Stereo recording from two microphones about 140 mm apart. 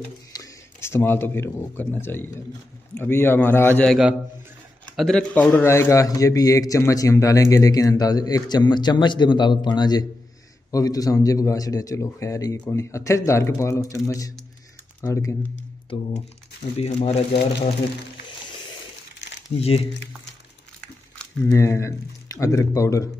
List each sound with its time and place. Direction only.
0.3 s a man's voice: 20° left (ahead or behind)
4.9 s speech: centre (ahead or behind)
5.3 s a man's voice: 10° left (ahead or behind)
16.7 s speech: 45° left (ahead or behind)
19.6 s speech: 45° left (ahead or behind)
21.5 s a man's voice: 20° left (ahead or behind)